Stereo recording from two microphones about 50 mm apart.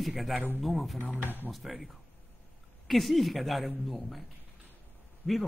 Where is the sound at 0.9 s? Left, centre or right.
Left.